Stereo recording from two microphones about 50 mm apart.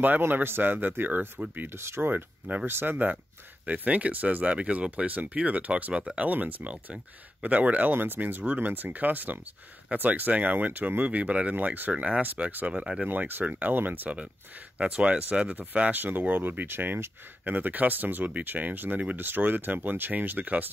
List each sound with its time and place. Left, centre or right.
0.2 s speech: right
1.7 s speech: right
3.6 s speech: right
11.5 s speech: right
11.9 s speech: right
13.1 s speech: right
15.5 s speech: right